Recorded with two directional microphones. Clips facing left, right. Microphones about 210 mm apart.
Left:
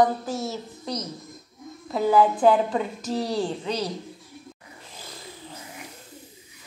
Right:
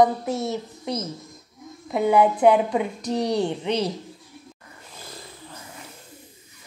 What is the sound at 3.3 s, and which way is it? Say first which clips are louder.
Speech: right 3 dB; 25° right (ahead or behind).